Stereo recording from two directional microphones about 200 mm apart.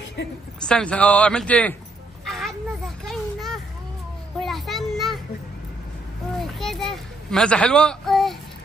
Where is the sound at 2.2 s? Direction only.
Centre (ahead or behind).